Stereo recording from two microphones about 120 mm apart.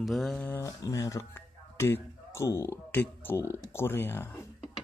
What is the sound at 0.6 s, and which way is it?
Speech, 30° left (ahead or behind).